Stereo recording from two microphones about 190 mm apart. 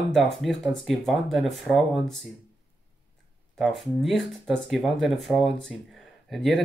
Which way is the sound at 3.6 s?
Centre (ahead or behind).